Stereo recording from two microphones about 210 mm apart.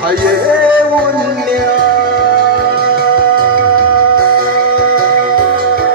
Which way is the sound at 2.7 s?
45° right (ahead or behind).